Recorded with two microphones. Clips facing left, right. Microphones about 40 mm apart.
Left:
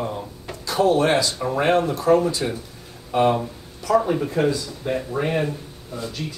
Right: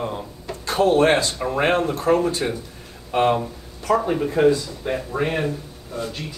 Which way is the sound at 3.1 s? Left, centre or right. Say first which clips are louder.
Even; right.